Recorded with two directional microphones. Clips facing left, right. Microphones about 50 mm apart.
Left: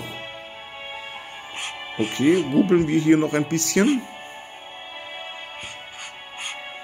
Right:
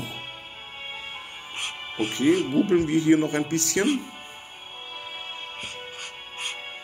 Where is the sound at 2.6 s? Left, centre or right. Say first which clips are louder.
Left 3 dB; left.